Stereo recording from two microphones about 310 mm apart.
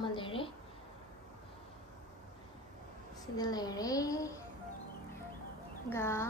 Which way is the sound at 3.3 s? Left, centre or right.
Centre.